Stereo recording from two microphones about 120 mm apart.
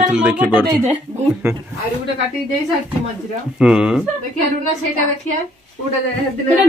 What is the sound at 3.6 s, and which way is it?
Speech, 5° right (ahead or behind).